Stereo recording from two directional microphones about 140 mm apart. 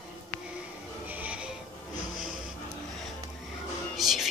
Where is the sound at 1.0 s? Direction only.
10° right (ahead or behind).